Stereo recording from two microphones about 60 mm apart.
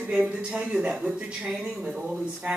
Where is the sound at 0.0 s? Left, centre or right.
Centre.